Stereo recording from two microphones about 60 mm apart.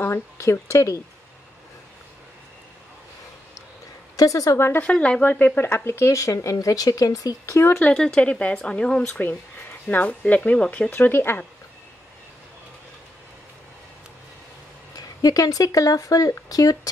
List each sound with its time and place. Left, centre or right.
0.0 s speech: left
4.2 s speech: left
4.9 s speech: centre
5.2 s speech: left
5.9 s speech: left
7.5 s speech: left
7.9 s speech: centre
8.2 s speech: left
9.2 s speech: left
10.9 s speech: left
15.0 s speech: left